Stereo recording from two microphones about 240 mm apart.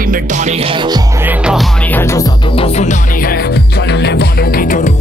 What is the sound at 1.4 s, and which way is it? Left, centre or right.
Music, centre.